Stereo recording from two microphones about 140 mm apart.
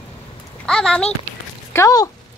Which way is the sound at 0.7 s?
5° left (ahead or behind).